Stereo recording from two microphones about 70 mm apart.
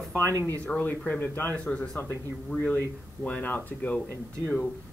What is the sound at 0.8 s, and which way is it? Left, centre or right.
Speech, left.